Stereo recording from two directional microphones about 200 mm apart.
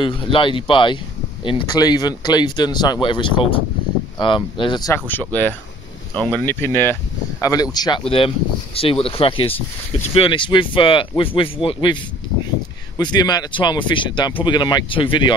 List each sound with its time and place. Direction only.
0.0 s speech: 25° left (ahead or behind)